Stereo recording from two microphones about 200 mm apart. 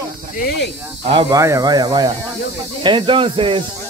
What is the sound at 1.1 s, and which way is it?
Speech, 15° right (ahead or behind).